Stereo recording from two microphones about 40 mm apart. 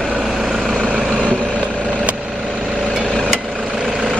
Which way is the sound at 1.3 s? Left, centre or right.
Left.